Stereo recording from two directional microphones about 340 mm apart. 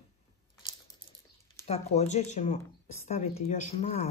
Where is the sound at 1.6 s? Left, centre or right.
Centre.